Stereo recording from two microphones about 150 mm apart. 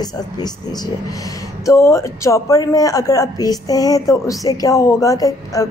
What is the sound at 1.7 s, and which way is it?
Speech, 20° left (ahead or behind).